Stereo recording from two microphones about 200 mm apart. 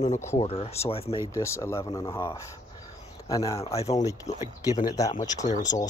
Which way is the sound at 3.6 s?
30° left (ahead or behind).